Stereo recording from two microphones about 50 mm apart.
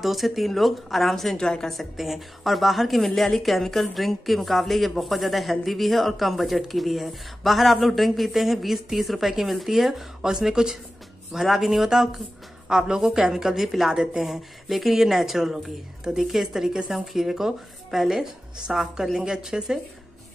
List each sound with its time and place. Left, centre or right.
0.0 s a woman's voice: centre
1.7 s a woman's voice: centre